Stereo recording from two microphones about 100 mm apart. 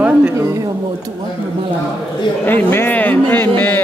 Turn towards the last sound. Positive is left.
turn(degrees=20)  # may be behind; listen again after turning